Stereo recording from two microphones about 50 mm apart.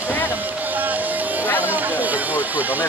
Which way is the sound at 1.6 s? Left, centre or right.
Right.